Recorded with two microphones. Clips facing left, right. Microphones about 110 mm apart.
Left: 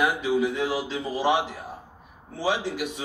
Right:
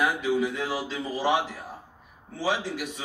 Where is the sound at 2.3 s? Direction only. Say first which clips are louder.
Left 2 dB; 15° left (ahead or behind).